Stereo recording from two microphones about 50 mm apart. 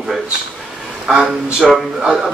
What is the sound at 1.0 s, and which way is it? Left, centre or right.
Speech, centre.